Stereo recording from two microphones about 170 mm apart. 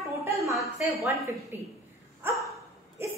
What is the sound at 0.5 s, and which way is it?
Speech, centre (ahead or behind).